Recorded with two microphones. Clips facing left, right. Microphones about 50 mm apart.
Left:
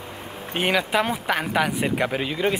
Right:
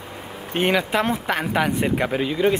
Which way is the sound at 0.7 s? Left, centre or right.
Centre.